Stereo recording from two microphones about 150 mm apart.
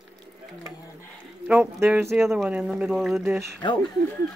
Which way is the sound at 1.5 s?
15° right (ahead or behind).